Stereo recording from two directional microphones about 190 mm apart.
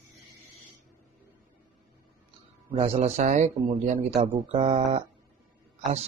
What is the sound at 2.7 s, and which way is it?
Speech, 35° right (ahead or behind).